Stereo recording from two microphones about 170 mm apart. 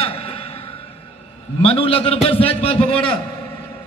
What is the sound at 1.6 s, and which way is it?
A man's voice, 35° left (ahead or behind).